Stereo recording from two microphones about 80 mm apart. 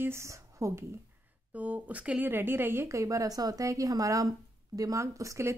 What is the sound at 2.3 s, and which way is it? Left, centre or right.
A woman's voice, right.